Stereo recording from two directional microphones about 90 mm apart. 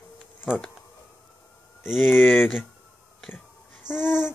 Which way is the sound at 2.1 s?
20° left (ahead or behind).